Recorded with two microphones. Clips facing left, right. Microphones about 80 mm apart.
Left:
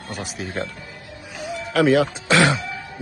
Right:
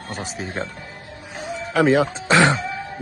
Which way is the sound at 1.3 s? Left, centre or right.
Right.